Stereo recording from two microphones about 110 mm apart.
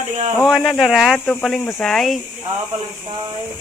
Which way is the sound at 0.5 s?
Centre (ahead or behind).